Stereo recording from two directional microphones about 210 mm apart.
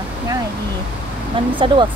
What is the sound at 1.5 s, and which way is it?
Speech, 25° right (ahead or behind).